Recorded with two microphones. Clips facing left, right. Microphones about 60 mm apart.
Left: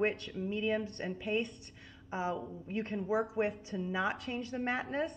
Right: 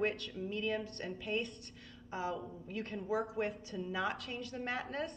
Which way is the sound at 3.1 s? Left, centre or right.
Left.